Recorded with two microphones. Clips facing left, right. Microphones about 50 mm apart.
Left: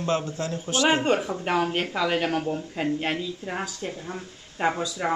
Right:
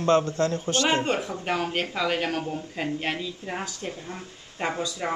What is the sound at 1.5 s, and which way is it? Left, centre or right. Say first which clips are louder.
Speech: left 3 dB; centre.